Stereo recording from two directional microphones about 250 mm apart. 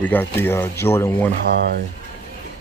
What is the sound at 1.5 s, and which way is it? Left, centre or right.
Speech, right.